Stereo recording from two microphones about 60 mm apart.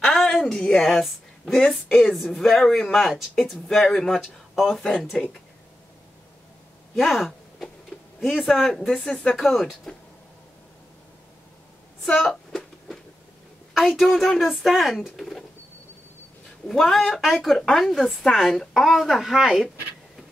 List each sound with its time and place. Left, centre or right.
0.0 s a woman's voice: centre
7.0 s a woman's voice: centre
9.1 s speech: centre
9.4 s a woman's voice: centre
12.0 s a sound: centre
13.7 s a woman's voice: centre
16.6 s a woman's voice: centre